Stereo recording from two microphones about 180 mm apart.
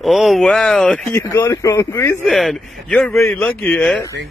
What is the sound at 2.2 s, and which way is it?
A man's voice, centre (ahead or behind).